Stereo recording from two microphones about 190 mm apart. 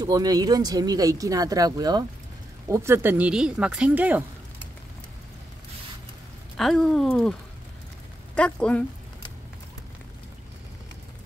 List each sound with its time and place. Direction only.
0.0 s speech: 20° right (ahead or behind)
6.5 s speech: centre (ahead or behind)
8.4 s speech: 5° left (ahead or behind)